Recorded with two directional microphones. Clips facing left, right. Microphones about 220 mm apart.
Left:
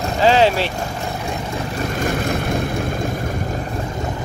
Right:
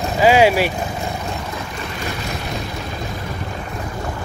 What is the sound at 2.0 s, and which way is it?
Vehicle, 50° left (ahead or behind).